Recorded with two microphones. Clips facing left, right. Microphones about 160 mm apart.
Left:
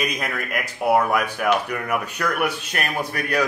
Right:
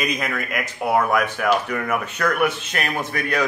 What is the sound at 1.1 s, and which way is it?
Speech, 10° left (ahead or behind).